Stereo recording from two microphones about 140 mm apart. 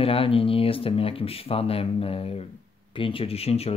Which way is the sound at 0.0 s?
40° left (ahead or behind).